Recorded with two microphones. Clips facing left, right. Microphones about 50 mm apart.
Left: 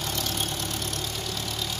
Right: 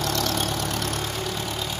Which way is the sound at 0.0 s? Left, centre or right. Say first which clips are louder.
Right 5 dB; right.